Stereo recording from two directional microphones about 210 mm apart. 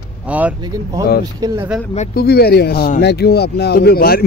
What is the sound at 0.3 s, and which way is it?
Speech, 5° right (ahead or behind).